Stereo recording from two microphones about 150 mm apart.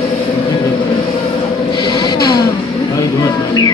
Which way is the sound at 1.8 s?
30° left (ahead or behind).